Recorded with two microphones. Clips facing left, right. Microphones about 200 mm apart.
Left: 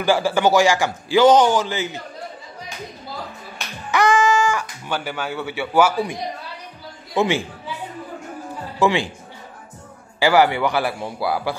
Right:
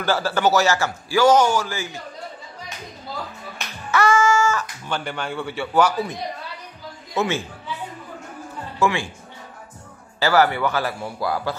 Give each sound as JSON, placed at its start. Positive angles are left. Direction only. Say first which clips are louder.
{"t": 0.0, "sound": "a man's voice", "louder": "left 3 dB", "side_deg": 15}
{"t": 3.9, "sound": "speech", "louder": "left 1 dB", "side_deg": 15}
{"t": 7.2, "sound": "a man's voice", "louder": "left 3 dB", "side_deg": 15}
{"t": 8.7, "sound": "speech", "louder": "left 3 dB", "side_deg": 15}
{"t": 10.2, "sound": "a man's voice", "louder": "left 2 dB", "side_deg": 15}